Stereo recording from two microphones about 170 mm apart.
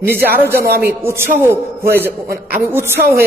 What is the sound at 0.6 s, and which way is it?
Speech, 70° right (ahead or behind).